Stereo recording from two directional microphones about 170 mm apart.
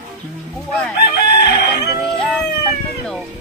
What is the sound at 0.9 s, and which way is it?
Chicken, 70° left (ahead or behind).